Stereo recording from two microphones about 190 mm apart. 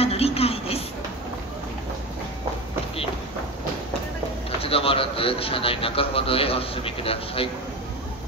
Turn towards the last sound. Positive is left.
turn(degrees=30)  # may be behind; listen again after turning